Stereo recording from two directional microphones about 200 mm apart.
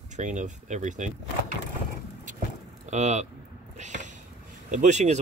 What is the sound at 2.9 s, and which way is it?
Speech, 35° right (ahead or behind).